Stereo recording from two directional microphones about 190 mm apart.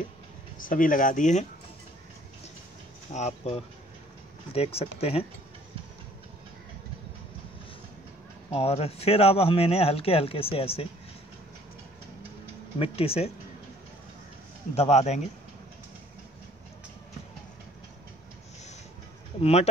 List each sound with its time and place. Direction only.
0.6 s speech: 45° left (ahead or behind)
3.1 s speech: 35° left (ahead or behind)
8.5 s speech: 30° left (ahead or behind)
12.7 s speech: 30° left (ahead or behind)
14.8 s speech: 35° left (ahead or behind)
19.4 s speech: 35° left (ahead or behind)